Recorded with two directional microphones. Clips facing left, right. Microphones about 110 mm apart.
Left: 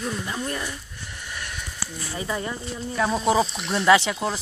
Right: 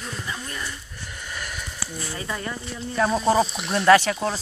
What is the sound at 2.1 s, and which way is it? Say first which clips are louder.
Speech: left 4 dB; 15° left (ahead or behind).